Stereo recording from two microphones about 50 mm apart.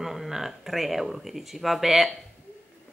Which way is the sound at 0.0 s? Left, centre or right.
Centre.